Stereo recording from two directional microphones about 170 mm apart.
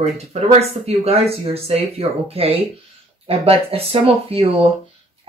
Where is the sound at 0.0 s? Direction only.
40° right (ahead or behind).